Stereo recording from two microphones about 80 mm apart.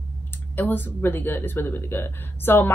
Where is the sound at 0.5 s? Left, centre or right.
Left.